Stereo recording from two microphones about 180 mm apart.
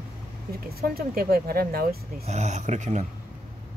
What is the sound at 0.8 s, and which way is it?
Speech, 55° right (ahead or behind).